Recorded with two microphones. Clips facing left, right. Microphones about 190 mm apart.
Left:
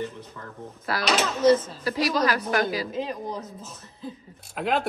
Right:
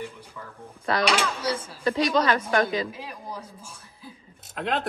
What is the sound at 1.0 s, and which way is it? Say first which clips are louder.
Speech: left 9 dB; 10° right (ahead or behind).